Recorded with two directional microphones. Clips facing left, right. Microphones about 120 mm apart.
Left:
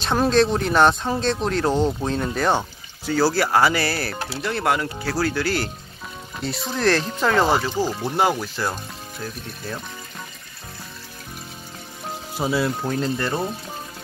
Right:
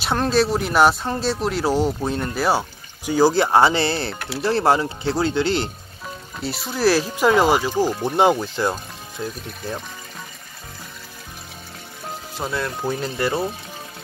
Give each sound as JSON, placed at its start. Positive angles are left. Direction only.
{"t": 0.0, "sound": "speech", "side_deg": -5}
{"t": 3.1, "sound": "speech", "side_deg": -15}
{"t": 6.4, "sound": "speech", "side_deg": 0}
{"t": 12.4, "sound": "speech", "side_deg": 5}
{"t": 12.8, "sound": "speech", "side_deg": -10}